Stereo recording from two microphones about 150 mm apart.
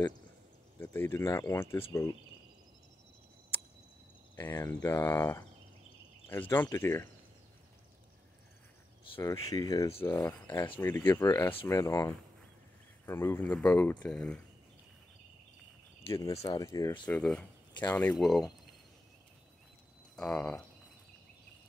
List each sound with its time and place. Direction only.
0.7 s speech: 15° left (ahead or behind)
4.4 s speech: 15° left (ahead or behind)
9.2 s speech: 20° left (ahead or behind)
16.1 s speech: 20° left (ahead or behind)
17.0 s speech: 5° left (ahead or behind)
20.2 s speech: 5° left (ahead or behind)